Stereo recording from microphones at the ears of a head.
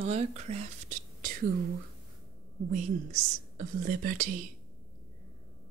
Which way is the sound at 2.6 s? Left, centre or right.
Right.